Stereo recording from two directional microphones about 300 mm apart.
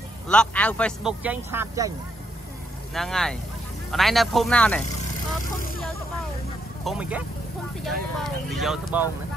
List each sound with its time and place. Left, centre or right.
0.3 s a man's voice: centre
2.9 s a man's voice: centre
5.4 s speech: left
6.8 s a man's voice: centre